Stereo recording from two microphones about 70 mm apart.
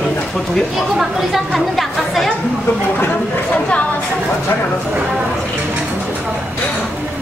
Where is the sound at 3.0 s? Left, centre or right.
Left.